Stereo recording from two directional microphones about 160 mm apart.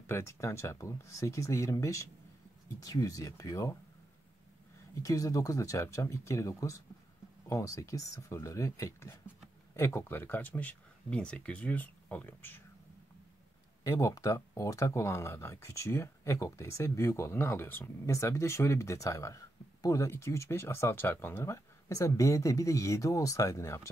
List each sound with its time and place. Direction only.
0.0 s speech: 15° left (ahead or behind)
4.9 s speech: 20° left (ahead or behind)
13.8 s speech: 20° left (ahead or behind)